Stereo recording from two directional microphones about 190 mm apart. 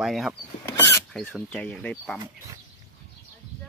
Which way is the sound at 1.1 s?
Centre (ahead or behind).